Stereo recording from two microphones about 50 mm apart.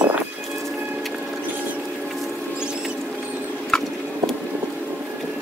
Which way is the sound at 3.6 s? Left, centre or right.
Centre.